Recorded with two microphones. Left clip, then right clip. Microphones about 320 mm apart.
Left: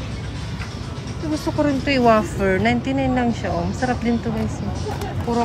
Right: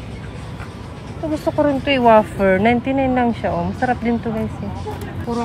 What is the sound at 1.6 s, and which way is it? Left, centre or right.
Speech, centre.